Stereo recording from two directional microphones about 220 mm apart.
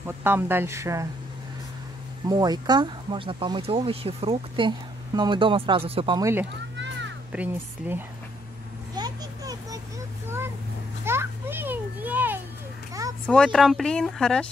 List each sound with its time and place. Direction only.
0.0 s speech: 10° right (ahead or behind)
2.2 s speech: 20° right (ahead or behind)
8.9 s a sound: 15° right (ahead or behind)
11.1 s children playing: 10° right (ahead or behind)
13.3 s speech: centre (ahead or behind)